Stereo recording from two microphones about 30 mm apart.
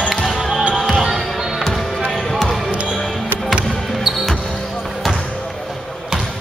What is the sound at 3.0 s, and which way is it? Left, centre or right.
Music, centre.